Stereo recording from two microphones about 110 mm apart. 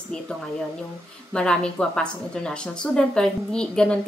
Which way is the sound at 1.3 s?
10° left (ahead or behind).